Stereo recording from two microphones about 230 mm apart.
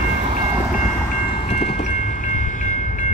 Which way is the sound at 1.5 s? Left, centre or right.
Left.